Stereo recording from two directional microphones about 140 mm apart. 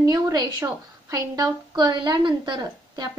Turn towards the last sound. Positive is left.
turn(degrees=-35)  # may be behind; listen again after turning